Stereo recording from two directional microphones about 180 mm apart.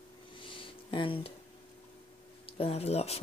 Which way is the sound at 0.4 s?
30° left (ahead or behind).